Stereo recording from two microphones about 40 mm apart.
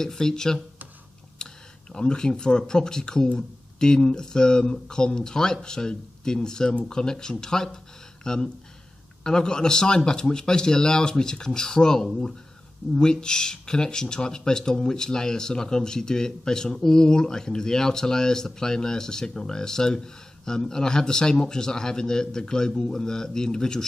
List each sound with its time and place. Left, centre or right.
0.0 s speech: centre